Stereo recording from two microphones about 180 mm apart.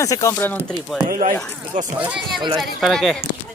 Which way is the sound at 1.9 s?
5° right (ahead or behind).